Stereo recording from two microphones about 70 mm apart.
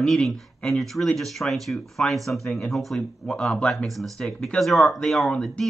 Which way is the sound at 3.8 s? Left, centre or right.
Centre.